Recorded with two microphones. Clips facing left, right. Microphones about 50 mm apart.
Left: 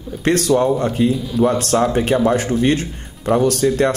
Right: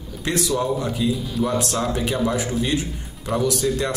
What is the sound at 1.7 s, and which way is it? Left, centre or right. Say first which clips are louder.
A man's voice: left 7 dB; left.